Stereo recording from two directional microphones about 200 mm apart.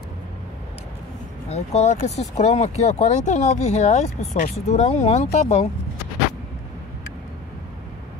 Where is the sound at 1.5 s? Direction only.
30° left (ahead or behind).